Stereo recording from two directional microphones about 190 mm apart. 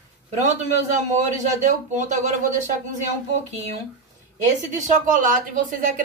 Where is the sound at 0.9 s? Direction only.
40° right (ahead or behind).